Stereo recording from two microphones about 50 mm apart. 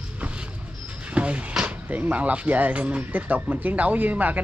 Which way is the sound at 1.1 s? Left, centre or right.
Right.